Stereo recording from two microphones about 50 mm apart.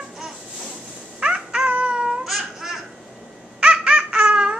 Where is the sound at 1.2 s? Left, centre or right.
Centre.